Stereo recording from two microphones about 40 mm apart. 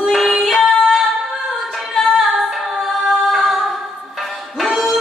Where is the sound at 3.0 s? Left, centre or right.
Centre.